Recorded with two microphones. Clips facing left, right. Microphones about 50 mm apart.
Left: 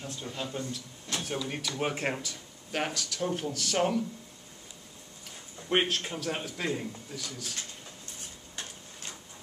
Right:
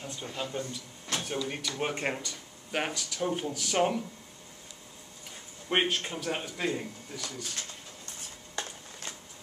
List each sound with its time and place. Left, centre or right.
0.0 s a sound: centre
0.4 s speech: centre
5.7 s speech: centre